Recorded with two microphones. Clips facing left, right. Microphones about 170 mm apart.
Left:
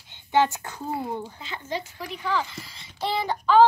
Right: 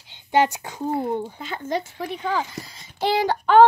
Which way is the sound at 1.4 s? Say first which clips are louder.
Right 5 dB; 50° right (ahead or behind).